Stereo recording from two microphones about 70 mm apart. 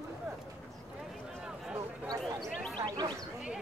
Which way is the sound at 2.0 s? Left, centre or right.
Centre.